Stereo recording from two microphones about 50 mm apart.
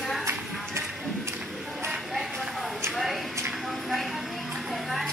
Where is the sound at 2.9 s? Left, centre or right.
Centre.